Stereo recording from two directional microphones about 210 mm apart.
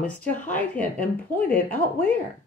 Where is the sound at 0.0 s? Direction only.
5° left (ahead or behind).